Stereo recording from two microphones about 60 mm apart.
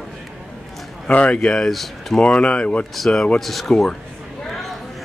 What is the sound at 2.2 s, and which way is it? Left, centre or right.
Speech, centre.